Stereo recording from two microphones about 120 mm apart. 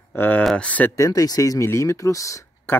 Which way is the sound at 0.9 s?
30° left (ahead or behind).